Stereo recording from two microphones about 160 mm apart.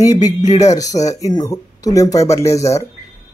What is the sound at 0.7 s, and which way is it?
Speech, 20° left (ahead or behind).